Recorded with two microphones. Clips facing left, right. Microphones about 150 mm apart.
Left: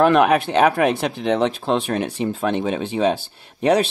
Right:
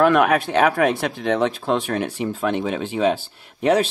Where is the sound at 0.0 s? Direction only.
20° left (ahead or behind).